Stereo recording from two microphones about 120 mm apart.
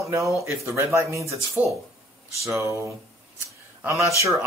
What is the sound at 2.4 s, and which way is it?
Speech, 25° right (ahead or behind).